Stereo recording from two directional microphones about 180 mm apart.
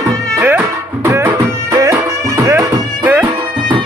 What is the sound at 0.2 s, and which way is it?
Music, 10° right (ahead or behind).